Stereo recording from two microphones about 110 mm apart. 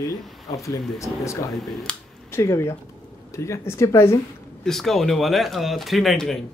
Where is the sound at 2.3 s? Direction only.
25° left (ahead or behind).